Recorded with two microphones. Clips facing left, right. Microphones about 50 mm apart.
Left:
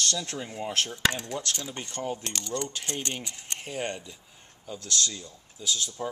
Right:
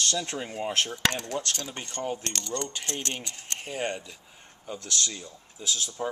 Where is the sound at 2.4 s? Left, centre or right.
Centre.